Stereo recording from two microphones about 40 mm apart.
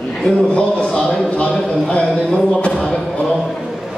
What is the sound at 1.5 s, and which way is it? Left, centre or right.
Speech, left.